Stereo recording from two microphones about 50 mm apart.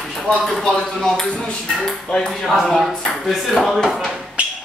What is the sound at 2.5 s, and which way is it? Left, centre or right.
Speech, centre.